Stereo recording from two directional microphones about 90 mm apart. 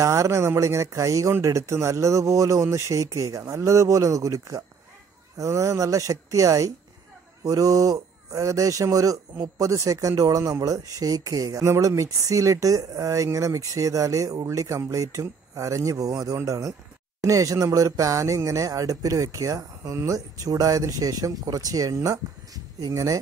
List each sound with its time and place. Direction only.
0.0 s speech: 35° right (ahead or behind)